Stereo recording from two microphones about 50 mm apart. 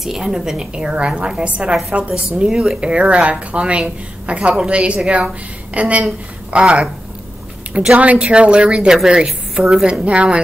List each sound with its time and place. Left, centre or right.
0.0 s a woman's voice: centre
1.9 s speech: right
2.3 s speech: centre
7.9 s a woman's voice: right